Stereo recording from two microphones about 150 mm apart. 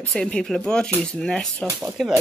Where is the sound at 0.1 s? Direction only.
5° left (ahead or behind).